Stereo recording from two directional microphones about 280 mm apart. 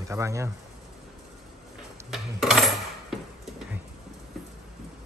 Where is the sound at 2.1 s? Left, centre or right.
Centre.